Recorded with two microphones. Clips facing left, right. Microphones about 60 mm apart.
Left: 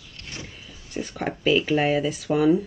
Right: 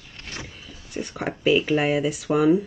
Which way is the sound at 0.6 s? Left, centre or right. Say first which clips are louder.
Left 1 dB; centre.